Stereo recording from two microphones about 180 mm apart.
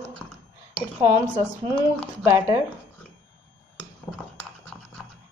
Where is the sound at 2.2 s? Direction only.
15° right (ahead or behind).